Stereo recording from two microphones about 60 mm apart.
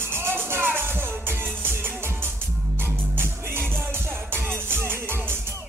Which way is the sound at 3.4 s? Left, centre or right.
Right.